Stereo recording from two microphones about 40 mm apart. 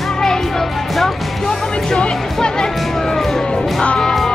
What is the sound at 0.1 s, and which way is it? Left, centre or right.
Music, centre.